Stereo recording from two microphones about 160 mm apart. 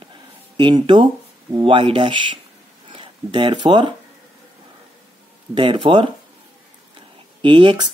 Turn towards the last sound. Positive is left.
turn(degrees=-30)  # may be behind; listen again after turning